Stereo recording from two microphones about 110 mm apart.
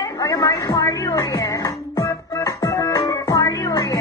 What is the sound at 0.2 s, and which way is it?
Music, 35° left (ahead or behind).